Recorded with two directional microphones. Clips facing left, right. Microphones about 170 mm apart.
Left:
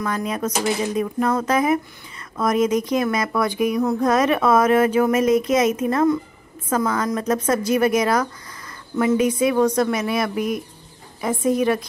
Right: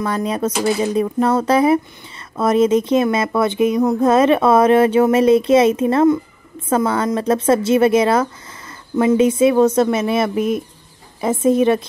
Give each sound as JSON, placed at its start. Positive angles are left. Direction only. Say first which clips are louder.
{"t": 0.0, "sound": "speech", "louder": "right 4 dB", "side_deg": -30}